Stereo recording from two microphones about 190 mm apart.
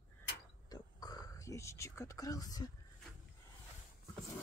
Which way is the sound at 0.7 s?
20° left (ahead or behind).